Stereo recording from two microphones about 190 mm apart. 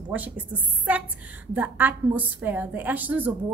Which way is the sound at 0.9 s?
10° right (ahead or behind).